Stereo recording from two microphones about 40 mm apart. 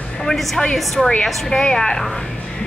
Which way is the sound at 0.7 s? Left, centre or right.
Centre.